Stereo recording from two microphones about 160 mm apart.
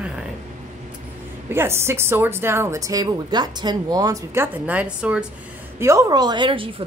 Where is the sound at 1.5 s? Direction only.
15° right (ahead or behind).